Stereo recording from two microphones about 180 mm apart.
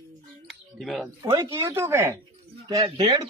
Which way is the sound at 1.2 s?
20° right (ahead or behind).